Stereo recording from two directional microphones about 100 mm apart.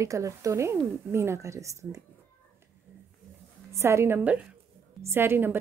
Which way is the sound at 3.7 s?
30° right (ahead or behind).